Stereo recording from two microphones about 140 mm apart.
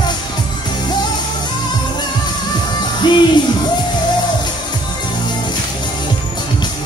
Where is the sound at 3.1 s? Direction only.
35° left (ahead or behind).